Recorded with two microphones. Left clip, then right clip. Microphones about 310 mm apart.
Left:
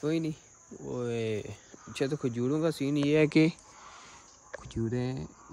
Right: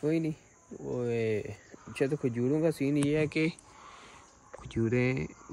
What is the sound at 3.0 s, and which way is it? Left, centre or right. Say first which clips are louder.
Speech: left 9 dB; left.